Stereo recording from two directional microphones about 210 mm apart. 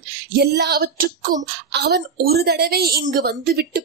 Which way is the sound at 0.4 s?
50° right (ahead or behind).